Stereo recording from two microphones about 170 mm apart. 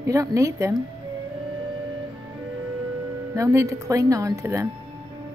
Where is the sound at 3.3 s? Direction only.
20° right (ahead or behind).